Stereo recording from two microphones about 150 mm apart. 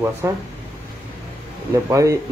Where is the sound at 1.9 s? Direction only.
20° right (ahead or behind).